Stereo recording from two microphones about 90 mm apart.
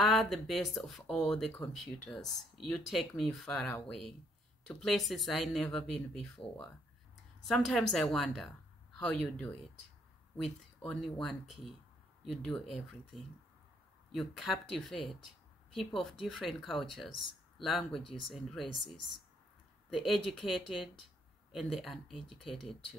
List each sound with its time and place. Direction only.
0.0 s speech: centre (ahead or behind)
6.4 s speech: 70° left (ahead or behind)
7.4 s speech: centre (ahead or behind)
20.0 s speech: centre (ahead or behind)